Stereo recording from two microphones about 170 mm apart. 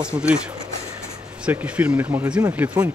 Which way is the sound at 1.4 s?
10° right (ahead or behind).